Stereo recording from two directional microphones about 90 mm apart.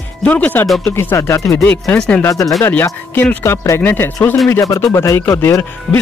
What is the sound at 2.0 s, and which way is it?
Speech, 15° left (ahead or behind).